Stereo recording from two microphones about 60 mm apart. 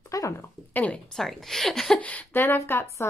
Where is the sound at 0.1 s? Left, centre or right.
Left.